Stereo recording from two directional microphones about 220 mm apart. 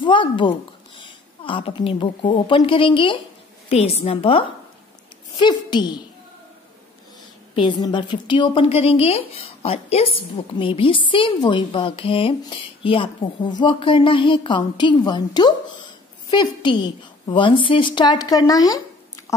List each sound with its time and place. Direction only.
0.0 s a woman's voice: 20° left (ahead or behind)
7.5 s a woman's voice: 20° left (ahead or behind)